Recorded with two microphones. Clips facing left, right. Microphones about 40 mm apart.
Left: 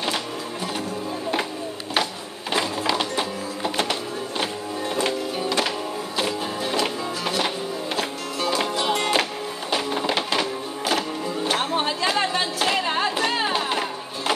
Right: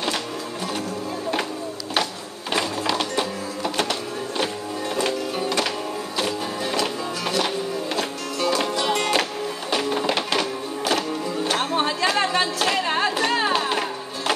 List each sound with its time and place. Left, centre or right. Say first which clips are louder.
2.5 s music: even; centre
4.9 s music: right 1 dB; centre